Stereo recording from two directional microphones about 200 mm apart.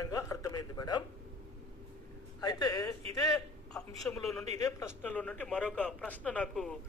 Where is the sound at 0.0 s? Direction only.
15° left (ahead or behind).